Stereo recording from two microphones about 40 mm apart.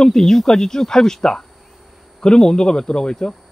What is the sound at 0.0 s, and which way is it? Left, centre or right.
Speech, centre.